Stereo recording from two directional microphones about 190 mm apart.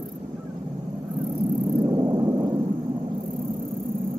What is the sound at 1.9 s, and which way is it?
Vehicle, 20° right (ahead or behind).